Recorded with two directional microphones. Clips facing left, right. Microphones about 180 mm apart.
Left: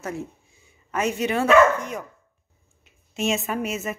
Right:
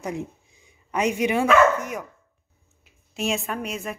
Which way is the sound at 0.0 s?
15° right (ahead or behind).